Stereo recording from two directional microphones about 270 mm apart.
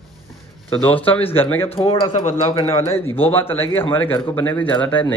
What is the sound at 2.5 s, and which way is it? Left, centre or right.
Speech, centre.